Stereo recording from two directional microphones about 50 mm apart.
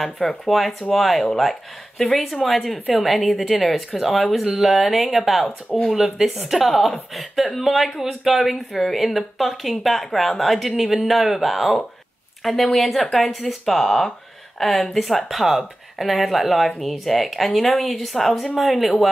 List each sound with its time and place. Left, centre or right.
0.5 s speech: centre